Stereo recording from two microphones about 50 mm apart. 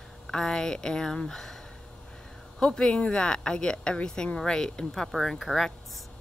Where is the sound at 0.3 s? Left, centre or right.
Centre.